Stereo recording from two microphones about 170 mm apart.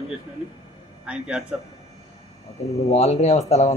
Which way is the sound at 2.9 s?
40° left (ahead or behind).